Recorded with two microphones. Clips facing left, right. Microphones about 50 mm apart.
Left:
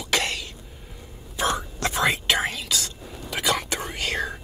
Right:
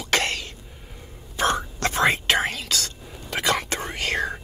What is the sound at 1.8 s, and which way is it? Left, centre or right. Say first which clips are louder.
Whispering: right 2 dB; right.